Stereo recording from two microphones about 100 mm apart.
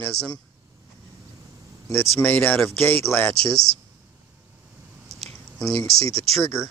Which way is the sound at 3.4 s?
5° left (ahead or behind).